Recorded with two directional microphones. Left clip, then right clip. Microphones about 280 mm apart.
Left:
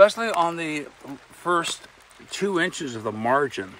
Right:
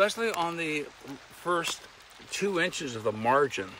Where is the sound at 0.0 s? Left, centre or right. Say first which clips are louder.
Left 9 dB; centre.